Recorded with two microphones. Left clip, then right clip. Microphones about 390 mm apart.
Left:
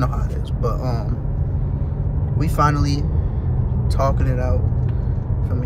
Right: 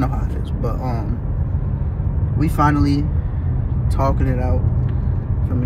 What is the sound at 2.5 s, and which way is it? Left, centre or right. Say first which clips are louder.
Speech: right 2 dB; centre.